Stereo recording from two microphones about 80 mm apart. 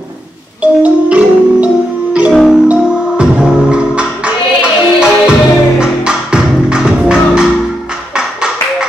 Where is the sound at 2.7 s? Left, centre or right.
Centre.